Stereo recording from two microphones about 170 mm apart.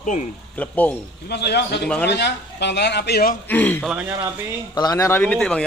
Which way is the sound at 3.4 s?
10° left (ahead or behind).